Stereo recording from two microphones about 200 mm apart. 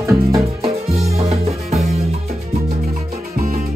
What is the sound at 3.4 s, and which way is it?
Music, 40° right (ahead or behind).